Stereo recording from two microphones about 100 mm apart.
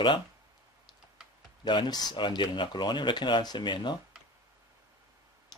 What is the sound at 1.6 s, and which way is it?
Speech, 45° left (ahead or behind).